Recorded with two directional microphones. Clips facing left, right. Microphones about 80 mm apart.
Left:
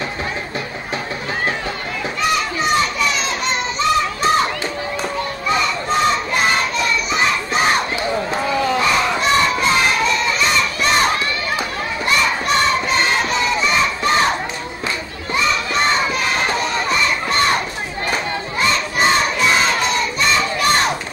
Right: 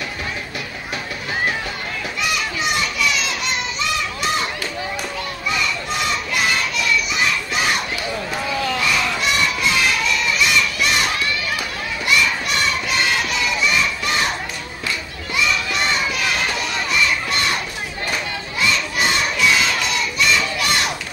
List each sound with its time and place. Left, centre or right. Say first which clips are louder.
2.2 s children playing: left 5 dB; left
5.5 s crowd: left 5 dB; left
15.3 s crowd: left 3 dB; left